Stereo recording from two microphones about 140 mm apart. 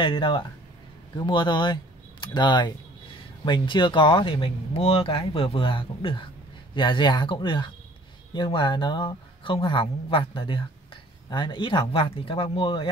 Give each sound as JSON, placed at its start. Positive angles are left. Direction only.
{"t": 0.0, "sound": "speech", "side_deg": 35}